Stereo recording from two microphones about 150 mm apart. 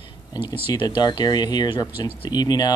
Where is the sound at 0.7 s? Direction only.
30° left (ahead or behind).